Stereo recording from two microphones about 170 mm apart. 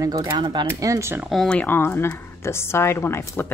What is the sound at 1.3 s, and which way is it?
A woman's voice, 5° left (ahead or behind).